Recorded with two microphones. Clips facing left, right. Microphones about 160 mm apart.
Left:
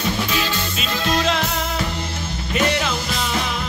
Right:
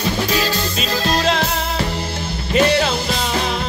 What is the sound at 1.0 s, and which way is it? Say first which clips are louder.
Music: right 2 dB; 35° right (ahead or behind).